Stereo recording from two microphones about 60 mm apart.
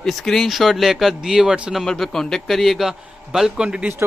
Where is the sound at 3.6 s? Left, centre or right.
Centre.